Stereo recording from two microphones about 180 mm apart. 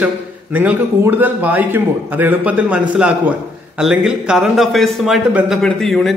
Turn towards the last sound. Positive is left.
turn(degrees=0)  # may be behind; listen again after turning